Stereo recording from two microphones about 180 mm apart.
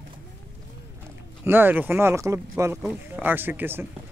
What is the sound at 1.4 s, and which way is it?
Speech, 10° right (ahead or behind).